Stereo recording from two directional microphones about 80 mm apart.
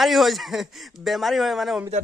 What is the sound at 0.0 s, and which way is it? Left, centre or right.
Speech, centre.